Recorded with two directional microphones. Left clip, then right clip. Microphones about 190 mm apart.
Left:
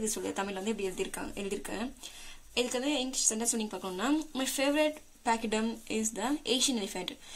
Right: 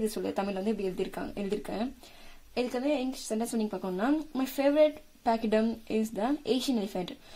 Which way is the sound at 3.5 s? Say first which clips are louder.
Right 3 dB; 40° right (ahead or behind).